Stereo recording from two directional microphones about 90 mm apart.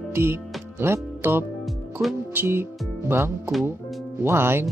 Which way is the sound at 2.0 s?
25° right (ahead or behind).